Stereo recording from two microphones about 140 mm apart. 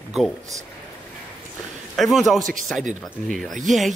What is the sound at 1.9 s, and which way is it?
A man's voice, centre (ahead or behind).